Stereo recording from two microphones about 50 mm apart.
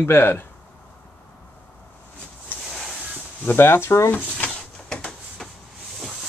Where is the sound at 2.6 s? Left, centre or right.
Centre.